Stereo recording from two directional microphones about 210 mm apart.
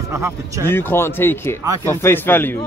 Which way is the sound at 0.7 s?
10° left (ahead or behind).